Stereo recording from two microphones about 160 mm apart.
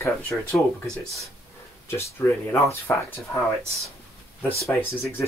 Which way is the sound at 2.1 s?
15° left (ahead or behind).